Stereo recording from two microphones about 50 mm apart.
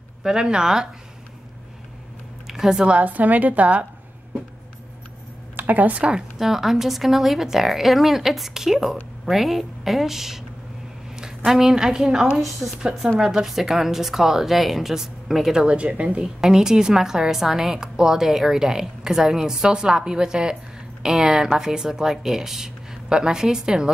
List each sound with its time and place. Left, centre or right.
0.2 s a woman's voice: centre
2.4 s a sound: centre
2.9 s a woman's voice: right
5.6 s speech: right
6.3 s a woman's voice: centre
11.1 s a sound: centre
11.5 s a woman's voice: centre
15.5 s speech: right
16.2 s a woman's voice: centre